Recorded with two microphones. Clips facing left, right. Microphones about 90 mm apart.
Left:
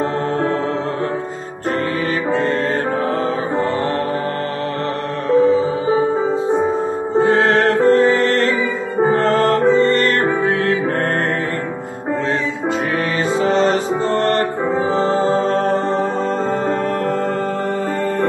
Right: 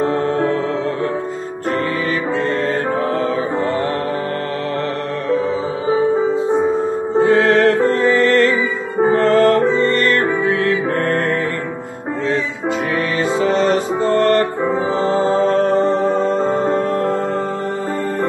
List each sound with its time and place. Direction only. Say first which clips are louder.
7.2 s music: right 1 dB; 40° left (ahead or behind)
13.4 s music: even; 30° left (ahead or behind)